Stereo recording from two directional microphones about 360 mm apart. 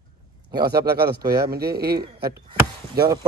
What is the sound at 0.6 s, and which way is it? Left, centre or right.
Speech, right.